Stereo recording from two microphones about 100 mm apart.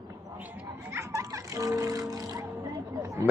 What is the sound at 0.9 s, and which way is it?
Music, 30° right (ahead or behind).